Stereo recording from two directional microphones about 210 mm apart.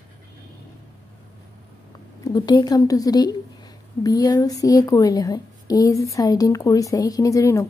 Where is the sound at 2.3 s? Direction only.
20° left (ahead or behind).